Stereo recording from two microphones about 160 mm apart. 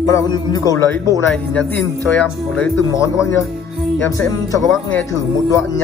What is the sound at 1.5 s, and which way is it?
Speech, 10° left (ahead or behind).